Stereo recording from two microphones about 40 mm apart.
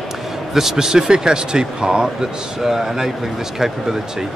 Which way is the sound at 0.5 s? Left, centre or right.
Centre.